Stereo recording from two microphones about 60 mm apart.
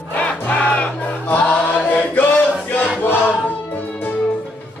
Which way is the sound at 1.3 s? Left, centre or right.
Left.